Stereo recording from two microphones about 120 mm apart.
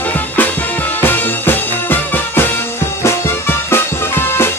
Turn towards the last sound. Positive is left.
turn(degrees=20)  # may be behind; listen again after turning